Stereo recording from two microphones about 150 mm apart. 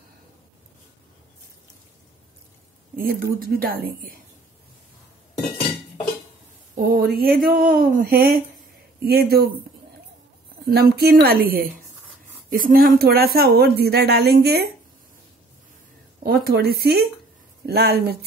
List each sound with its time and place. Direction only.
3.0 s speech: 85° right
6.7 s speech: 80° right
10.6 s speech: 90° right
12.4 s speech: 70° right (ahead or behind); by 14.6 s 90° right
16.2 s speech: 90° right